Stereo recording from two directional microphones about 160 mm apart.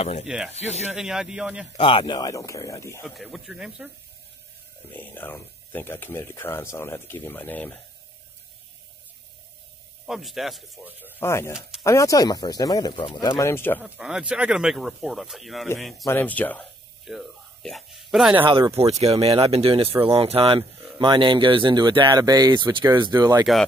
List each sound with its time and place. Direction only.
0.5 s speech: 40° left (ahead or behind)
0.9 s speech: 5° right (ahead or behind)
1.8 s speech: 30° left (ahead or behind)
3.2 s speech: centre (ahead or behind)
4.9 s speech: 10° left (ahead or behind)
10.0 s speech: centre (ahead or behind)
11.1 s speech: 15° left (ahead or behind)
13.2 s speech: 15° left (ahead or behind)
13.8 s speech: 5° right (ahead or behind)
16.1 s speech: 10° left (ahead or behind)
17.1 s speech: centre (ahead or behind)
18.4 s speech: 30° right (ahead or behind)